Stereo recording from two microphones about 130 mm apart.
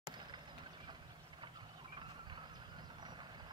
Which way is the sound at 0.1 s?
35° right (ahead or behind).